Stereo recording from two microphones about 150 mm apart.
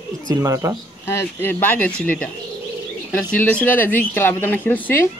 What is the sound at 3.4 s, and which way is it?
Speech, 10° left (ahead or behind).